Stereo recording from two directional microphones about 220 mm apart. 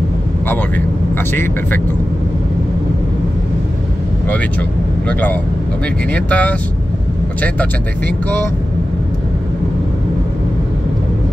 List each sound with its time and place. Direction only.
0.5 s speech: 10° left (ahead or behind)
4.3 s speech: 5° left (ahead or behind)